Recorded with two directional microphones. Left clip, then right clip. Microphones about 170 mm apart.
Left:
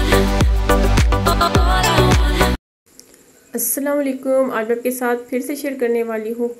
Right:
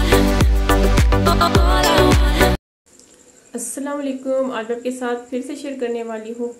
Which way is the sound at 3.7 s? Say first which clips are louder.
Left 6 dB; 25° left (ahead or behind).